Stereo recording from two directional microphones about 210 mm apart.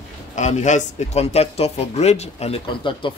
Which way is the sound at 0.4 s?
35° left (ahead or behind).